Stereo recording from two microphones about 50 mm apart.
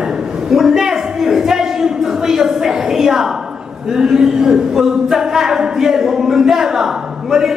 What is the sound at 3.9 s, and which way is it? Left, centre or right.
Speech, centre.